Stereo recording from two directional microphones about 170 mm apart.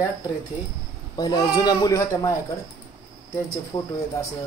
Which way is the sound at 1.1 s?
20° left (ahead or behind).